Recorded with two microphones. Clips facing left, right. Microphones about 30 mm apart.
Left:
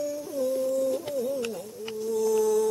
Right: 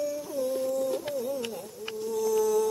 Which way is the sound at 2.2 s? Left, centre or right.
Centre.